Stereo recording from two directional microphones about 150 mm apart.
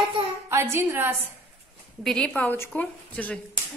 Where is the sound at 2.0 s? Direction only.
10° left (ahead or behind).